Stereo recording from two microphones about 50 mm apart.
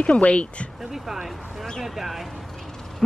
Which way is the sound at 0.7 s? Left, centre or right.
Centre.